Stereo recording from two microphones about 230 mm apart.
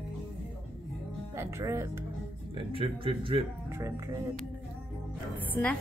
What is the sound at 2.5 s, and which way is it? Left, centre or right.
Speech, right.